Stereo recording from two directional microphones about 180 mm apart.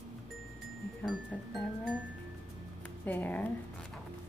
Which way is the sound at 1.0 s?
Centre (ahead or behind).